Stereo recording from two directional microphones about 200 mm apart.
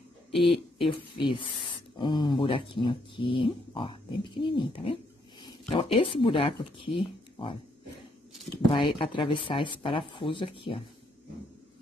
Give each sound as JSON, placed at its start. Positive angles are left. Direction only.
{"t": 0.3, "sound": "speech", "side_deg": 0}
{"t": 0.7, "sound": "speech", "side_deg": 25}
{"t": 8.8, "sound": "speech", "side_deg": 25}